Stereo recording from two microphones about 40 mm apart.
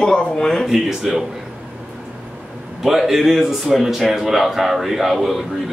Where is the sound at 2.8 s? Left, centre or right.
Centre.